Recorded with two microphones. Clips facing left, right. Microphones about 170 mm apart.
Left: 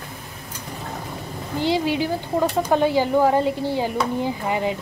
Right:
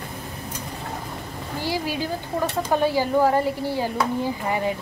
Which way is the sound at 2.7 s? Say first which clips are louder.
Left 1 dB; 20° left (ahead or behind).